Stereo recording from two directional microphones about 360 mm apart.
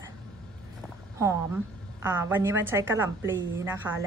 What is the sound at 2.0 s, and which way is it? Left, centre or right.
A woman's voice, centre.